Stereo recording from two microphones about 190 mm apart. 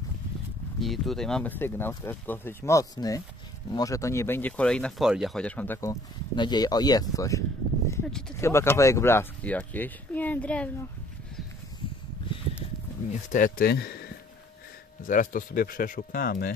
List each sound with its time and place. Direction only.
0.7 s speech: centre (ahead or behind)
12.3 s a sound: 25° left (ahead or behind)
13.3 s speech: 45° left (ahead or behind)
15.0 s speech: 45° left (ahead or behind)